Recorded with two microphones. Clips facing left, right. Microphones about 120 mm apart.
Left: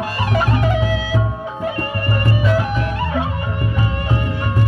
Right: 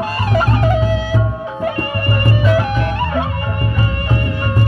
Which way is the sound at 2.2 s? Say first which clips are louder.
Right 3 dB; 60° right (ahead or behind).